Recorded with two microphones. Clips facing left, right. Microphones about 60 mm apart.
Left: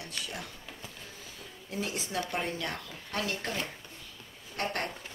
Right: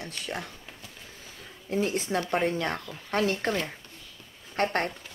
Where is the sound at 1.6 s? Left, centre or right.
Right.